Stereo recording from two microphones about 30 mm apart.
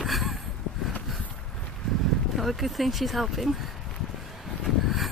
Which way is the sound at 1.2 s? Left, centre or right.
Left.